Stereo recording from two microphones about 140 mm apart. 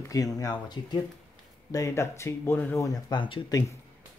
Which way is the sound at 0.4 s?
30° left (ahead or behind).